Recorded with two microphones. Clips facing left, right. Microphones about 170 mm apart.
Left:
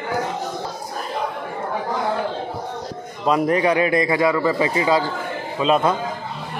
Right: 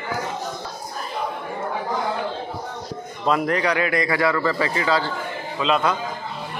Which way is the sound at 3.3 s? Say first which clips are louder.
Left 3 dB; 20° left (ahead or behind).